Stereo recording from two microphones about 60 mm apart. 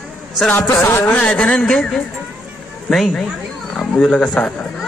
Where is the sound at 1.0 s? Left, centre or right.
Left.